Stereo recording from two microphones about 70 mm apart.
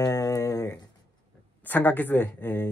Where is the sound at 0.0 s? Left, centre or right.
Left.